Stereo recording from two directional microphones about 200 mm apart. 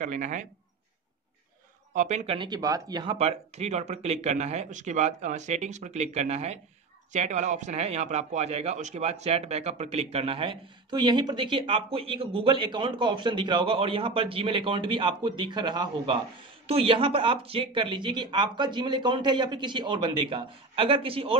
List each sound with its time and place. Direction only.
0.0 s speech: 40° right (ahead or behind)
2.0 s speech: 35° right (ahead or behind)